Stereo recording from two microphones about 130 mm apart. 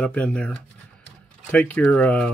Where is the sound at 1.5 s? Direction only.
10° left (ahead or behind).